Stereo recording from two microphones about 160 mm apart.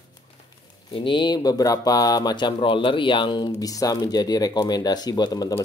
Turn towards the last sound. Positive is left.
turn(degrees=25)  # may be behind; listen again after turning